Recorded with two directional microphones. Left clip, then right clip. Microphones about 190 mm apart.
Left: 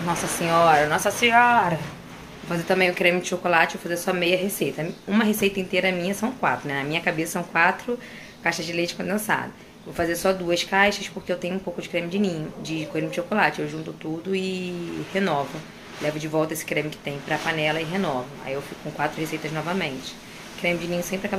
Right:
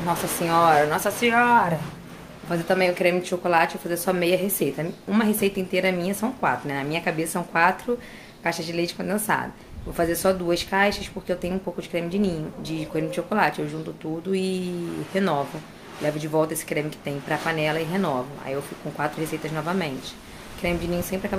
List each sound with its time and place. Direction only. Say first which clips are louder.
0.1 s a woman's voice: even; 10° right (ahead or behind)